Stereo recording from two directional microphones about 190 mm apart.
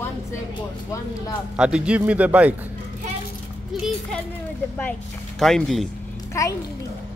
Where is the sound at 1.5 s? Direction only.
5° right (ahead or behind).